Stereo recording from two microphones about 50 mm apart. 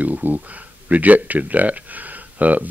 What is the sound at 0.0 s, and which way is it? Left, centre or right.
Speech, right.